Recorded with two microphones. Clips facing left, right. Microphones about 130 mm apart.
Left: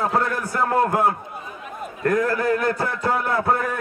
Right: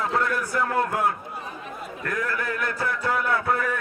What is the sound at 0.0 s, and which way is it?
A man's voice, 40° left (ahead or behind).